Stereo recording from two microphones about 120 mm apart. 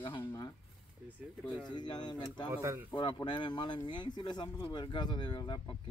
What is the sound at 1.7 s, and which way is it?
Speech, 40° left (ahead or behind).